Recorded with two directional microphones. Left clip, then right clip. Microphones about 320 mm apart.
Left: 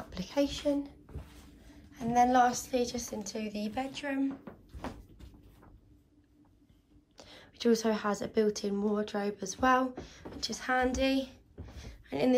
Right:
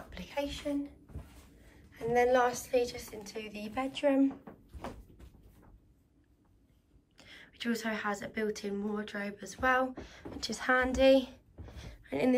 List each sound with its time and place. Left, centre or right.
0.1 s a sound: centre
1.9 s a woman's voice: centre
7.2 s a woman's voice: centre